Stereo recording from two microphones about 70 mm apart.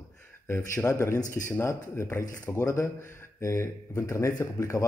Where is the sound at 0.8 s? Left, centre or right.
Left.